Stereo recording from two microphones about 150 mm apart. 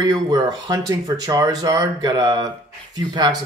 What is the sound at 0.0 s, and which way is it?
Speech, 25° right (ahead or behind).